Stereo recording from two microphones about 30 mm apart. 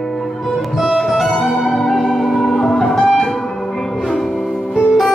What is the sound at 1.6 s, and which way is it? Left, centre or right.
Music, centre.